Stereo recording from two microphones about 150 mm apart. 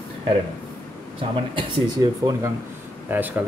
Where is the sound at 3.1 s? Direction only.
10° right (ahead or behind).